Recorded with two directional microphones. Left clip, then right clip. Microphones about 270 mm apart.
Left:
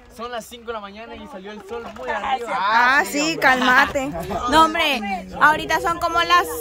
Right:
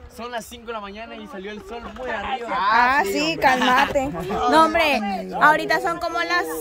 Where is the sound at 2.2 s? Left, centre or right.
Left.